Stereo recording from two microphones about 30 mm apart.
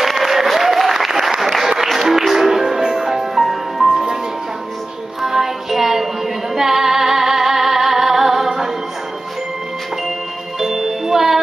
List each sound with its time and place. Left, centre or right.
0.0 s applause: centre
2.0 s music: centre
3.8 s music: centre
5.2 s music: centre
6.5 s female singing: centre
10.6 s music: centre